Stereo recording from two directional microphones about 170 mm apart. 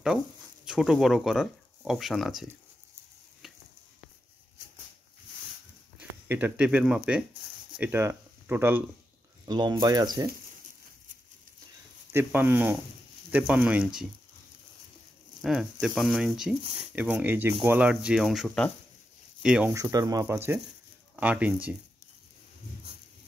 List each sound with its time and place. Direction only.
0.7 s speech: centre (ahead or behind)
5.9 s speech: 10° right (ahead or behind)
9.5 s speech: 25° right (ahead or behind)
12.1 s speech: 15° right (ahead or behind)
15.4 s speech: 5° right (ahead or behind)
19.7 s speech: 20° right (ahead or behind)